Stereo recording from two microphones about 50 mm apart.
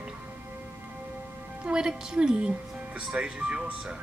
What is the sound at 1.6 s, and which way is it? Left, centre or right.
A woman's voice, centre.